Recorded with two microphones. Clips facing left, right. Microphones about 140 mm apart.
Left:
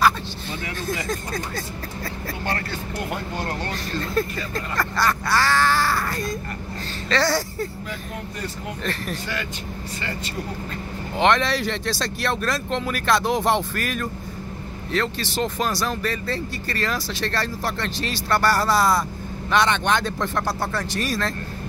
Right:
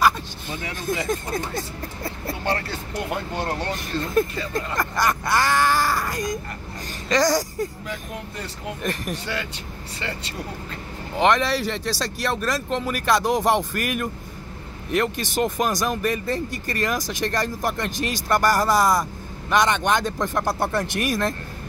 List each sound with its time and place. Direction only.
0.8 s speech: 20° right (ahead or behind)
11.1 s speech: 5° right (ahead or behind)